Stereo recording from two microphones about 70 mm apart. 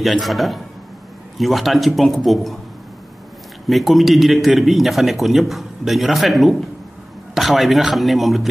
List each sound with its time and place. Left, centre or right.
0.0 s speech: centre
3.6 s speech: centre